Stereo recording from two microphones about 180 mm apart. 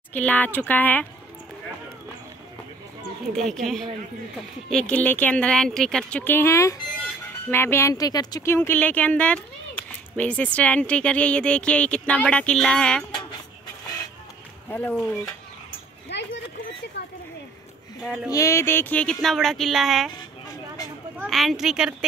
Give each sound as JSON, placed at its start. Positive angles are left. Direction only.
{"t": 0.1, "sound": "speech", "side_deg": 10}
{"t": 3.3, "sound": "speech", "side_deg": 0}
{"t": 14.7, "sound": "speech", "side_deg": 10}
{"t": 16.1, "sound": "a sound", "side_deg": 75}
{"t": 18.0, "sound": "speech", "side_deg": -5}
{"t": 18.3, "sound": "speech", "side_deg": 15}
{"t": 21.2, "sound": "speech", "side_deg": 0}